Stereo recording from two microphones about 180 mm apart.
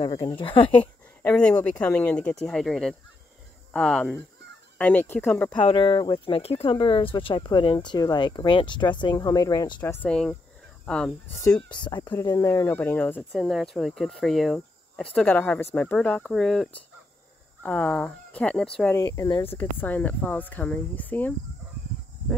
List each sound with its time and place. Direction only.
0.0 s speech: 30° left (ahead or behind)
1.6 s speech: 10° left (ahead or behind)
5.6 s speech: 30° left (ahead or behind)
10.0 s speech: 5° left (ahead or behind)
11.7 s speech: 25° left (ahead or behind); by 18.9 s 5° left (ahead or behind)
18.9 s speech: 20° left (ahead or behind)
19.4 s speech: 10° left (ahead or behind)